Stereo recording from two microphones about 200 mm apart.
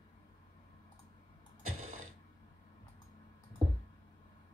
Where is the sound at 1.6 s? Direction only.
90° right.